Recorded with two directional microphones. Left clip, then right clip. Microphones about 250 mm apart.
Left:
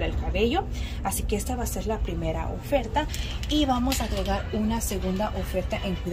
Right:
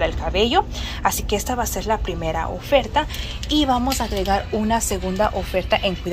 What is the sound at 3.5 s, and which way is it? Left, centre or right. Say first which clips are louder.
Speech: right 6 dB; centre.